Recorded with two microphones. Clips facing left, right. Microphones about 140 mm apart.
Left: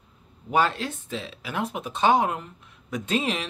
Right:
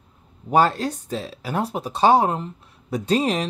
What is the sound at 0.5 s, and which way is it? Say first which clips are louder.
Speech: right 5 dB; 40° right (ahead or behind).